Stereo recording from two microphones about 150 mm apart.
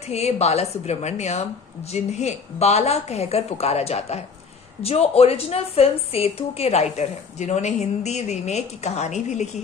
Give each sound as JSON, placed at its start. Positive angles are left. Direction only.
{"t": 0.1, "sound": "a woman's voice", "side_deg": 45}